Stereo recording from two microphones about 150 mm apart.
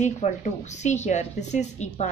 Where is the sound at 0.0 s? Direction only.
50° left (ahead or behind).